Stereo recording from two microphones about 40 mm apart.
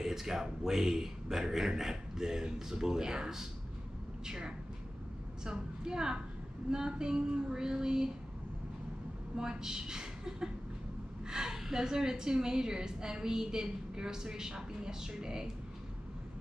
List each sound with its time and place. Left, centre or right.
0.0 s a woman's voice: centre
9.4 s a woman's voice: centre